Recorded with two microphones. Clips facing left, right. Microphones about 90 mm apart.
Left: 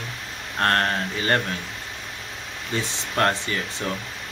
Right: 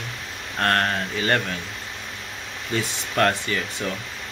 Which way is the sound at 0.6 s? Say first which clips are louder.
Even; 30° left (ahead or behind).